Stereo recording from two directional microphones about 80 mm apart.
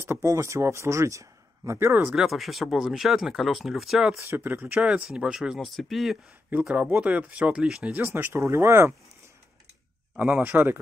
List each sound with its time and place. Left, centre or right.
0.0 s speech: right
1.8 s speech: right
2.1 s speech: centre
4.3 s speech: right
4.8 s speech: centre
5.6 s speech: centre
6.7 s speech: centre
7.9 s speech: right
10.1 s speech: right